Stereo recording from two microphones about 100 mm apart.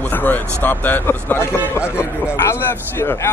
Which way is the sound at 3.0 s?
25° left (ahead or behind).